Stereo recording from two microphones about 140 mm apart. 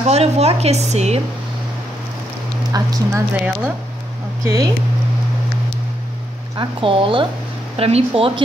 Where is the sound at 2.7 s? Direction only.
25° right (ahead or behind).